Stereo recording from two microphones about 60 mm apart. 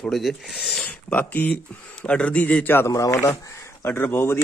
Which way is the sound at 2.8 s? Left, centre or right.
Left.